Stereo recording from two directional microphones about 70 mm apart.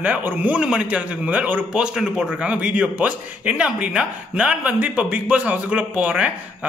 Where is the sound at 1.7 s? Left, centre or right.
Centre.